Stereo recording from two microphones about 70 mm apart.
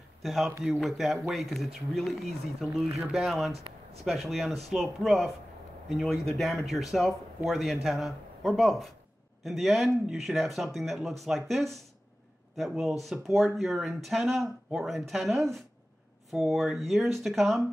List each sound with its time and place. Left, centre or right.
0.2 s speech: centre